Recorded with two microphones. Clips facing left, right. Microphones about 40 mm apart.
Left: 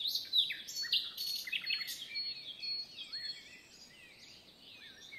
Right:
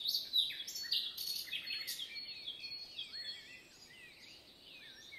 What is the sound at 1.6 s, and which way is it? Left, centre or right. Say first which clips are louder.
Bird vocalization: left 5 dB; left.